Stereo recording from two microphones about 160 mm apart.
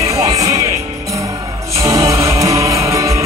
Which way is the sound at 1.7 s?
20° right (ahead or behind).